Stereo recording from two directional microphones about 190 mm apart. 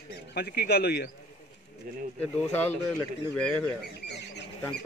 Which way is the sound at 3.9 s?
60° left (ahead or behind).